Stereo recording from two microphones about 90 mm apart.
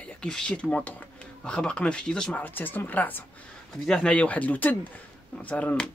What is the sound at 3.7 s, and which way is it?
Speech, 5° left (ahead or behind).